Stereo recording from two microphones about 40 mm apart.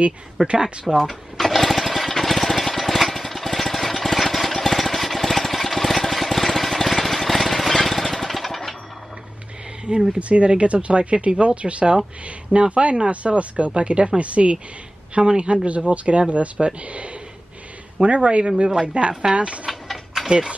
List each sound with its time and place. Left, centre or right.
0.4 s speech: right
0.8 s jackhammer: centre
9.8 s speech: right
10.1 s speech: right
19.7 s a sound: centre
20.2 s speech: right